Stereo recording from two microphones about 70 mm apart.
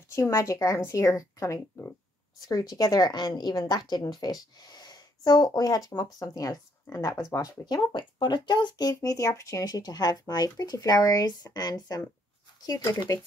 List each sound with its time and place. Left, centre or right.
0.1 s a woman's voice: left
2.4 s a woman's voice: left
7.6 s speech: left
9.0 s speech: left